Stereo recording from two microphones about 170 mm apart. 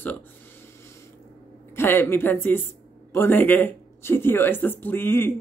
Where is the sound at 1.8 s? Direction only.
15° left (ahead or behind).